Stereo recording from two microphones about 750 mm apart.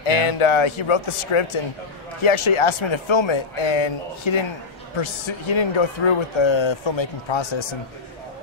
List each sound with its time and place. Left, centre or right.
0.0 s speech: left